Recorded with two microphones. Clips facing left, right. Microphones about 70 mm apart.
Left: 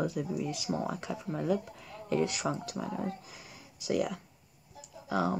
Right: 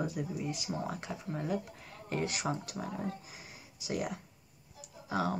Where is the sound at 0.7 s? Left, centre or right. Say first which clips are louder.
Left 6 dB; centre.